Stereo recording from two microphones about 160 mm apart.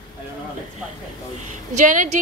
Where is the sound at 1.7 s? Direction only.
50° right (ahead or behind).